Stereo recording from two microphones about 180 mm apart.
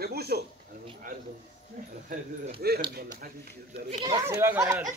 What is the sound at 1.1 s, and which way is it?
A man's voice, 50° right (ahead or behind).